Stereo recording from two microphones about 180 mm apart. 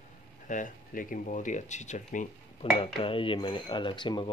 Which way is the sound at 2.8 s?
30° left (ahead or behind).